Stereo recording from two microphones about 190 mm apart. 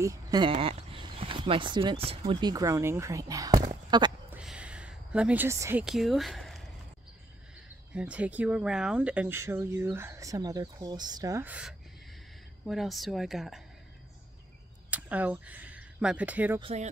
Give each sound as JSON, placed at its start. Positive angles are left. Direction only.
{"t": 0.0, "sound": "speech", "side_deg": -20}
{"t": 2.5, "sound": "speech", "side_deg": -15}
{"t": 4.3, "sound": "a sound", "side_deg": -5}
{"t": 7.9, "sound": "speech", "side_deg": -5}
{"t": 14.9, "sound": "speech", "side_deg": -10}
{"t": 16.5, "sound": "speech", "side_deg": -30}